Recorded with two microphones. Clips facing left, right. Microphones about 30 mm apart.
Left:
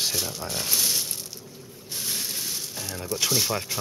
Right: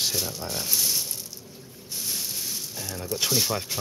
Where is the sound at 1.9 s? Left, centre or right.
Left.